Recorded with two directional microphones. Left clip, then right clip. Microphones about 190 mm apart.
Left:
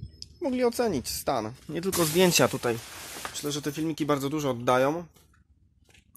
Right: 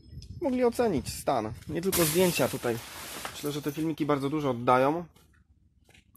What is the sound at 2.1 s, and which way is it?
Speech, 20° left (ahead or behind).